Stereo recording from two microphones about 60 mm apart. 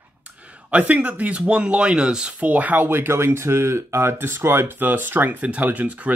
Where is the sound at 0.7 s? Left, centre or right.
Right.